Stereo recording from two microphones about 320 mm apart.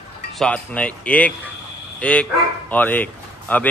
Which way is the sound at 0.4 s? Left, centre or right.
Centre.